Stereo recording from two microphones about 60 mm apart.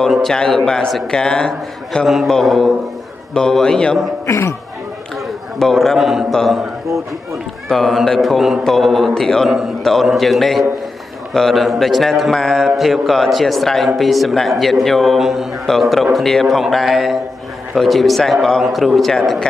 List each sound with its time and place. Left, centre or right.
0.1 s a man's voice: centre
2.0 s a man's voice: centre
4.3 s speech: left
5.6 s speech: centre
7.6 s a man's voice: centre
12.7 s speech: centre